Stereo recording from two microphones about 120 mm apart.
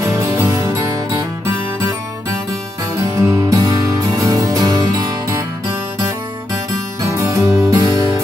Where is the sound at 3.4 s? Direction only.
30° right (ahead or behind).